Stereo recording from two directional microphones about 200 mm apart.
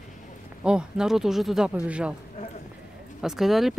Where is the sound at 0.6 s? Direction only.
5° right (ahead or behind).